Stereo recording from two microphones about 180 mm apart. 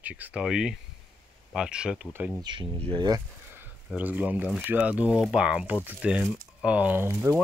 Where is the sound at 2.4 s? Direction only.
25° right (ahead or behind).